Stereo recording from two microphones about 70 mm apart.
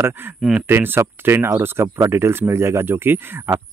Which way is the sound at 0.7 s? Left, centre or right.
Right.